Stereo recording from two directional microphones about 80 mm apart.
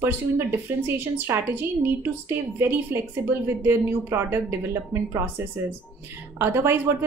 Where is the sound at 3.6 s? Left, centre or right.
Right.